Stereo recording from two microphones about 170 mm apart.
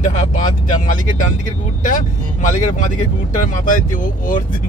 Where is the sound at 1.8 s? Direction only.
50° left (ahead or behind).